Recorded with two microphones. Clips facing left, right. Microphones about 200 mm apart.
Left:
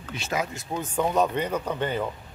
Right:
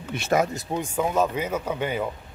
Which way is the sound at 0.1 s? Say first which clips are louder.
Right 7 dB; 50° right (ahead or behind).